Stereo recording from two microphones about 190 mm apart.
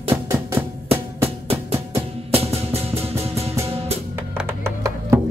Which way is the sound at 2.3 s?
30° right (ahead or behind).